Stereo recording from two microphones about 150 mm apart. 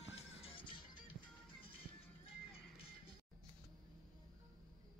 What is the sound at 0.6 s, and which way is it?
Music, 35° left (ahead or behind).